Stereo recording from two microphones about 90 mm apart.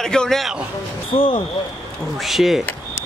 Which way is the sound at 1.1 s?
90° left.